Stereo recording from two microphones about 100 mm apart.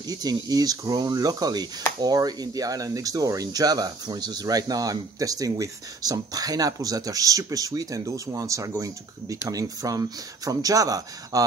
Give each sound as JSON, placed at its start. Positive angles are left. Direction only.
{"t": 0.0, "sound": "speech", "side_deg": -40}